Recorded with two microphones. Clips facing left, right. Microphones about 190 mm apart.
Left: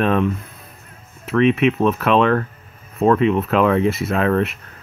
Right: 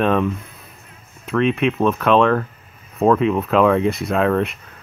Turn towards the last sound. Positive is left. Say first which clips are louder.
# even
turn(degrees=0)  # may be behind; listen again after turning